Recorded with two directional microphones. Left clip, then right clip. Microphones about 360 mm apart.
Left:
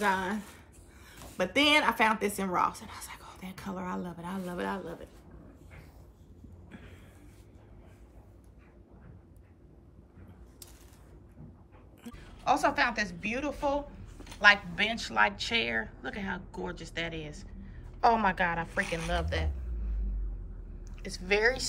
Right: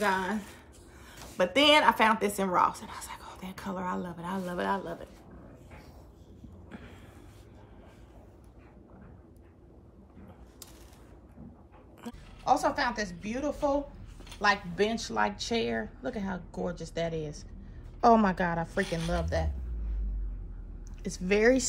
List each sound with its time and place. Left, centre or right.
0.0 s a woman's voice: centre
12.0 s a woman's voice: centre
21.1 s a woman's voice: centre